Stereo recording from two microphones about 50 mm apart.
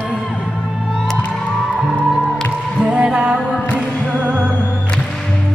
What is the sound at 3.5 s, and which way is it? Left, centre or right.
Music, left.